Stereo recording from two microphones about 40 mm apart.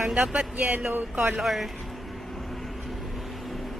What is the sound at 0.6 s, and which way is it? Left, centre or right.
Speech, right.